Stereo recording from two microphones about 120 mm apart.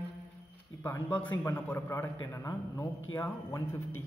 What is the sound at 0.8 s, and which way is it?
A man's voice, 15° left (ahead or behind).